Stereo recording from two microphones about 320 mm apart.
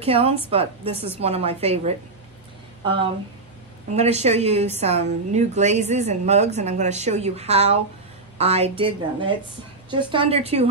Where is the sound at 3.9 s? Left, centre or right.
Centre.